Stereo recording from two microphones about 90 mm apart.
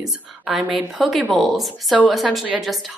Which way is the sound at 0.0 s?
5° right (ahead or behind).